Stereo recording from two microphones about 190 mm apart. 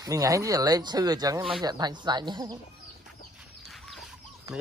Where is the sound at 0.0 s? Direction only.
20° right (ahead or behind).